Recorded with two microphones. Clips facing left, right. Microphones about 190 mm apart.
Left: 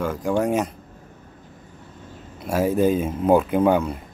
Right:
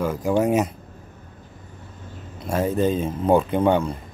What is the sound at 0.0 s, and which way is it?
Speech, 5° right (ahead or behind).